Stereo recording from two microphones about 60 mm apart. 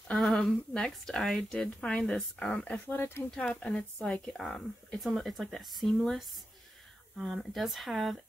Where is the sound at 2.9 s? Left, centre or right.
Left.